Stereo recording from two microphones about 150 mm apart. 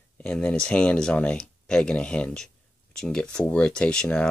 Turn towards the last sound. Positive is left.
turn(degrees=5)  # may be behind; listen again after turning